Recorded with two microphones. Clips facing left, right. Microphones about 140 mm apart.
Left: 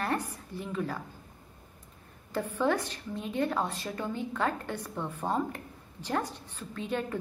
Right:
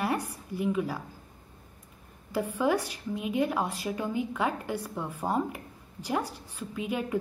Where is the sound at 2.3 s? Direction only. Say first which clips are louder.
Right 2 dB; 10° right (ahead or behind).